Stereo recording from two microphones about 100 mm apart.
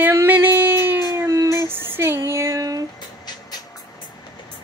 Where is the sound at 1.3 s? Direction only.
30° right (ahead or behind).